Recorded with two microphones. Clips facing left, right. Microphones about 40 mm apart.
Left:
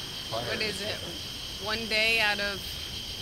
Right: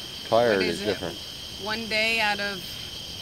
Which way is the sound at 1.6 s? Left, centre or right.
Centre.